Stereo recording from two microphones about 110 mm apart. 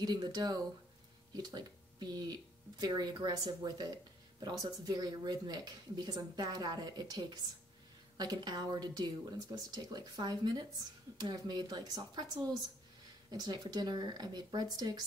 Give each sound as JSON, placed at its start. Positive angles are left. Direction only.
{"t": 0.0, "sound": "speech", "side_deg": -40}